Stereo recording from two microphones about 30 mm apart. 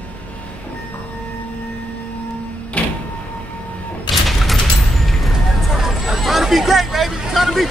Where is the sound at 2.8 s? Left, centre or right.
Left.